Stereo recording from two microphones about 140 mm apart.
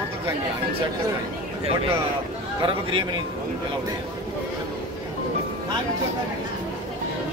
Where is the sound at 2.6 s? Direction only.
35° right (ahead or behind).